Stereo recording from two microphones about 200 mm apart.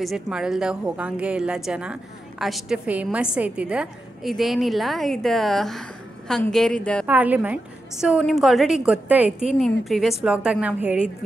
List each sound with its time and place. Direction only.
0.0 s a woman's voice: centre (ahead or behind)
7.1 s a woman's voice: 10° right (ahead or behind)